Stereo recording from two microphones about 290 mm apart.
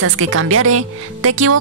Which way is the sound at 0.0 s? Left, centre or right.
Right.